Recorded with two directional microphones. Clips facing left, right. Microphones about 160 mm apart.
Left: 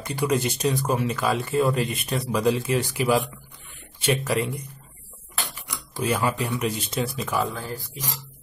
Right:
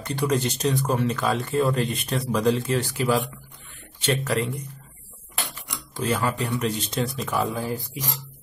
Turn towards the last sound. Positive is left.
turn(degrees=-20)  # may be behind; listen again after turning